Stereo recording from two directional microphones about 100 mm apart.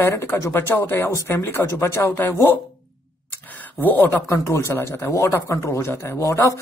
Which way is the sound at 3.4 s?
15° left (ahead or behind).